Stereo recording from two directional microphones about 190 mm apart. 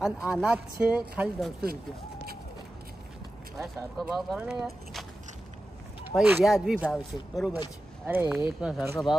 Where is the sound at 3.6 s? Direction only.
Centre (ahead or behind).